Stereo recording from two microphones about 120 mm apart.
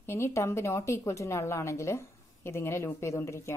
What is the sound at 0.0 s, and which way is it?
A woman's voice, 20° left (ahead or behind).